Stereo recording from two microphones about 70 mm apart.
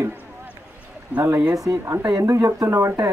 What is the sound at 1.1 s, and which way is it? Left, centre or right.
Speech, right.